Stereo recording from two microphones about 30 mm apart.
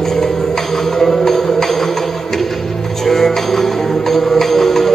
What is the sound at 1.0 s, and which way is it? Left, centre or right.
Music, centre.